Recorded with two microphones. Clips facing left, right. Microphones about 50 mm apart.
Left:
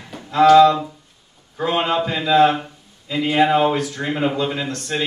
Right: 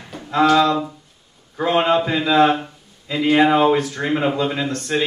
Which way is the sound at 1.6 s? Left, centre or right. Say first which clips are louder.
Right 3 dB; centre.